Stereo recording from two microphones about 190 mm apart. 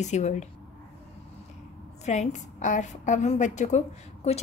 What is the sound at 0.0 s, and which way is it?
Speech, 35° left (ahead or behind).